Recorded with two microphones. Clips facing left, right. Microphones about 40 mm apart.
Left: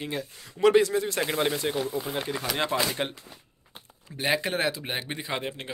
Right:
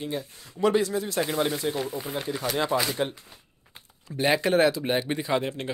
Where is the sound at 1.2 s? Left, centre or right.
Left.